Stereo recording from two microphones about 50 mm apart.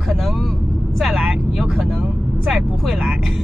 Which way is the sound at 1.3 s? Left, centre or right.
Centre.